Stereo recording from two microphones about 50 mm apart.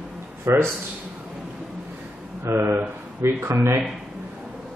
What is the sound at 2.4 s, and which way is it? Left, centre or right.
A man's voice, right.